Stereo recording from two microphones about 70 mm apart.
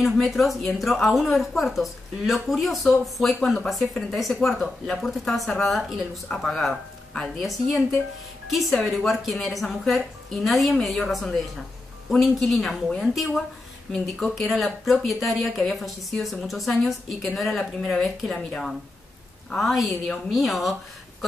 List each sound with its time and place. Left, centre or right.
0.0 s speech: centre